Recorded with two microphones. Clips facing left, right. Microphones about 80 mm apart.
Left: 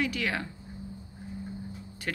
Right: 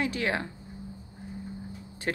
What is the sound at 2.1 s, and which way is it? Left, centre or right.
Speech, right.